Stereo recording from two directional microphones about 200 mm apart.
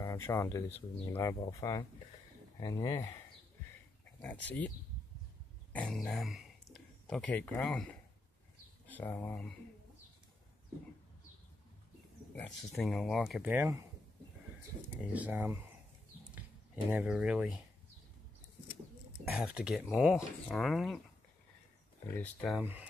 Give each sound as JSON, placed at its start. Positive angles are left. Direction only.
{"t": 0.0, "sound": "speech", "side_deg": 15}
{"t": 4.2, "sound": "speech", "side_deg": 10}
{"t": 12.4, "sound": "speech", "side_deg": 5}
{"t": 15.0, "sound": "speech", "side_deg": -5}
{"t": 16.9, "sound": "speech", "side_deg": -5}
{"t": 19.3, "sound": "speech", "side_deg": -5}
{"t": 22.1, "sound": "speech", "side_deg": 5}
{"t": 22.6, "sound": "speech", "side_deg": -10}